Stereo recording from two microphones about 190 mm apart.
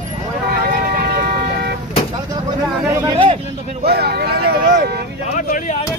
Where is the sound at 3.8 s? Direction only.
55° right (ahead or behind).